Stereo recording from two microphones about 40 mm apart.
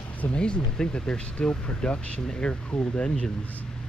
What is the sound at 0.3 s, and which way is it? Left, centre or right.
Speech, left.